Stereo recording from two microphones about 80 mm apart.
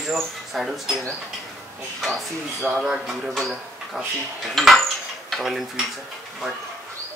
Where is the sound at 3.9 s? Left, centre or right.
Centre.